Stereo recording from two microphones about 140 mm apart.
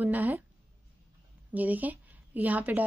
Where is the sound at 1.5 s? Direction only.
10° right (ahead or behind).